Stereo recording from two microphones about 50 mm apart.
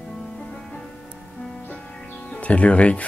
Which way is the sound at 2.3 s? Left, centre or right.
Left.